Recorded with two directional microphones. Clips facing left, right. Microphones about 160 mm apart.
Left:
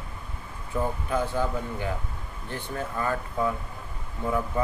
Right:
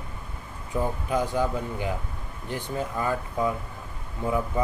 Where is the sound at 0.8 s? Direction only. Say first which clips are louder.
Right 1 dB; 15° right (ahead or behind).